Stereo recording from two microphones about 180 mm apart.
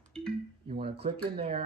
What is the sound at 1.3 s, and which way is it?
Speech, 30° right (ahead or behind).